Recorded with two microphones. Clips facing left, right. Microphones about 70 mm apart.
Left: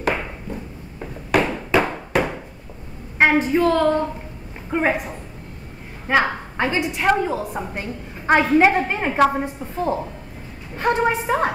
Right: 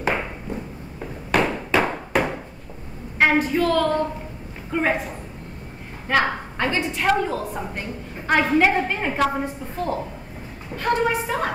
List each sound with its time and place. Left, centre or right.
1.3 s a sound: centre
3.2 s a woman's voice: left
6.1 s a woman's voice: centre